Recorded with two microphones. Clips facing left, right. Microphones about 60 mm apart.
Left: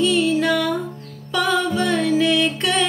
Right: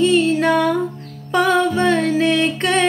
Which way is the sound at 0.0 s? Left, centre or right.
Right.